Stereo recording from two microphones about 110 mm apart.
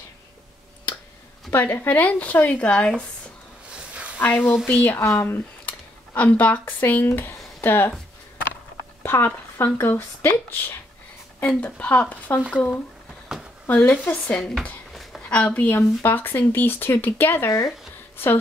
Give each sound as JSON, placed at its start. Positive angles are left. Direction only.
{"t": 1.5, "sound": "speech", "side_deg": 15}
{"t": 3.7, "sound": "a sound", "side_deg": -10}
{"t": 4.2, "sound": "speech", "side_deg": 15}
{"t": 9.0, "sound": "speech", "side_deg": 20}
{"t": 13.7, "sound": "speech", "side_deg": 15}
{"t": 14.6, "sound": "a sound", "side_deg": 5}
{"t": 15.2, "sound": "speech", "side_deg": 15}